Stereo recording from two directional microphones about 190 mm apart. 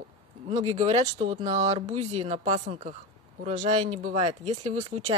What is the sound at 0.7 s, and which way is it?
Speech, 35° right (ahead or behind).